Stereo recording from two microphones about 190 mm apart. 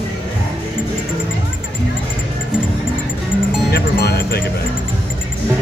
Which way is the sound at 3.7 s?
55° left (ahead or behind).